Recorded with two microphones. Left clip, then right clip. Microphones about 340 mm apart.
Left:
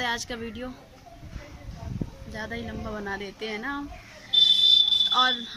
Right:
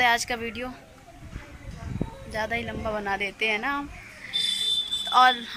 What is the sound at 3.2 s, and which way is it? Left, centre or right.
Speech, right.